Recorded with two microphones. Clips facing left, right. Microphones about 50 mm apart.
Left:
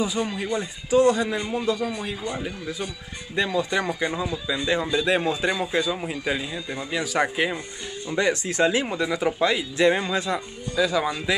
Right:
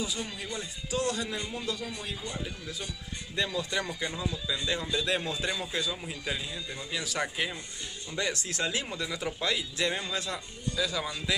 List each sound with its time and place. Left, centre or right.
0.2 s speech: left
0.8 s speech: left
1.4 s speech: left
8.2 s speech: left
10.1 s speech: left
11.1 s speech: left